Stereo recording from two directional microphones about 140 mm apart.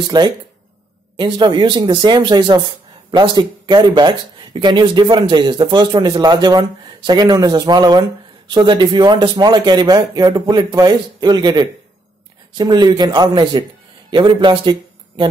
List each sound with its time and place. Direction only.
0.1 s a man's voice: 30° right (ahead or behind)